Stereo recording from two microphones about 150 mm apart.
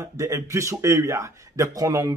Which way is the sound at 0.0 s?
20° right (ahead or behind).